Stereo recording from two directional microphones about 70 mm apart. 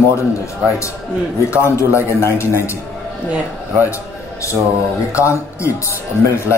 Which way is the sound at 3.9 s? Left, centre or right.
Left.